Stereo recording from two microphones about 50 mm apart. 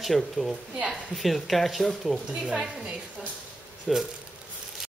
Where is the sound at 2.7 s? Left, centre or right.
Centre.